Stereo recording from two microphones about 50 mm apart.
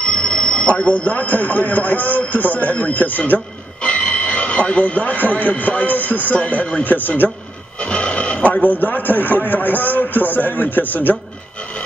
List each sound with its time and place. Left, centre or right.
0.0 s speech: left
3.8 s speech: left
7.8 s a sound: centre
8.5 s a man's voice: left